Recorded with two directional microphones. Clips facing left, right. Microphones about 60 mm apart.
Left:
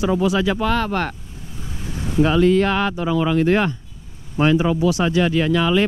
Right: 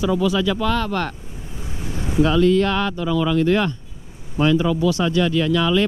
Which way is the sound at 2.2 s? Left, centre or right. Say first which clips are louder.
Left 1 dB; left.